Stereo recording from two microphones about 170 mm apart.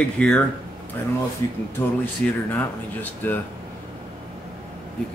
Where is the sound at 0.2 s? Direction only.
5° left (ahead or behind).